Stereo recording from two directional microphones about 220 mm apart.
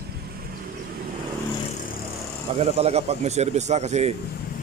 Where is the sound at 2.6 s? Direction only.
30° right (ahead or behind).